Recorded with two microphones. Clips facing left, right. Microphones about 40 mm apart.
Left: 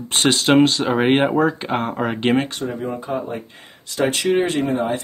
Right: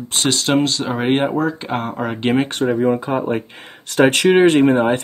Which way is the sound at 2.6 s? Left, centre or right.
Right.